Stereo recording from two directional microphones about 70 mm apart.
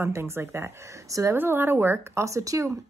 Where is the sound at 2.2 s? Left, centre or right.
Right.